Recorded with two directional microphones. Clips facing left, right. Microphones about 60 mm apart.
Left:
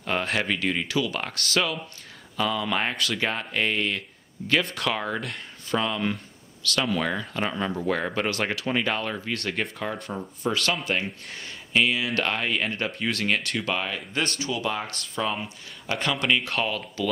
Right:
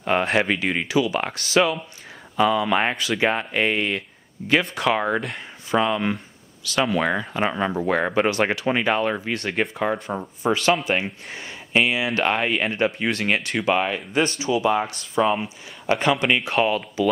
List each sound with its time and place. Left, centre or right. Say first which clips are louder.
0.0 s speech: right 6 dB; right
5.2 s speech: right 3 dB; centre
9.3 s speech: right 5 dB; centre